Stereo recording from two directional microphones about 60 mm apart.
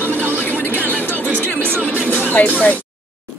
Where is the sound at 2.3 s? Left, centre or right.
Left.